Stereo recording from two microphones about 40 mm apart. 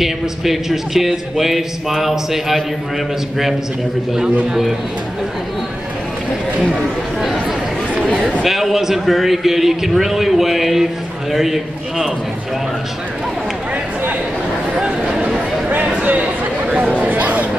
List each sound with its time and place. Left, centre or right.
0.0 s a man's voice: centre
6.7 s a man's voice: centre
8.1 s speech: right
8.5 s a man's voice: centre
14.8 s bow-wow: centre
16.0 s chatter: right